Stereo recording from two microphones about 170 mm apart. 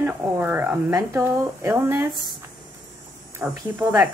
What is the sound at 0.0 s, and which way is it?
A woman's voice, 10° right (ahead or behind).